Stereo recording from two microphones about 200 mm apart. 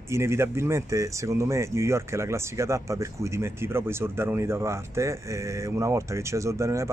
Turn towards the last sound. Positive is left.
turn(degrees=-15)  # may be behind; listen again after turning